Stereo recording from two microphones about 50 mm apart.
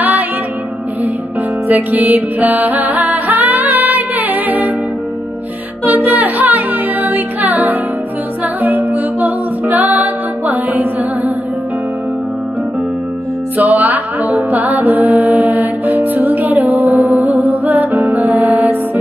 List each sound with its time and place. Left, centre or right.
1.7 s music: right
5.9 s music: right
13.6 s music: right